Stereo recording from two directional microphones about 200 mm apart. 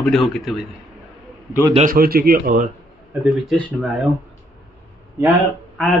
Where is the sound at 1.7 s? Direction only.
45° right (ahead or behind).